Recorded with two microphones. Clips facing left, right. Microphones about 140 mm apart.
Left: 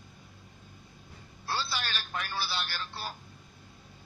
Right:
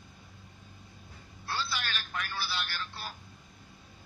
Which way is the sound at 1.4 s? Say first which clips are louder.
Left 1 dB; 30° left (ahead or behind).